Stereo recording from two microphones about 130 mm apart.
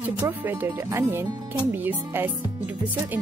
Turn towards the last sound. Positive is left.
turn(degrees=-15)  # may be behind; listen again after turning